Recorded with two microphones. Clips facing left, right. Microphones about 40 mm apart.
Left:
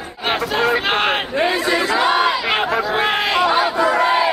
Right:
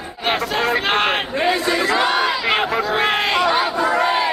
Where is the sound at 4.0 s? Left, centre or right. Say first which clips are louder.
Left 2 dB; centre.